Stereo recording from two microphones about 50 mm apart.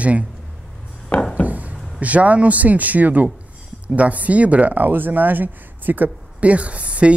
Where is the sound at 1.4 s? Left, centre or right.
Right.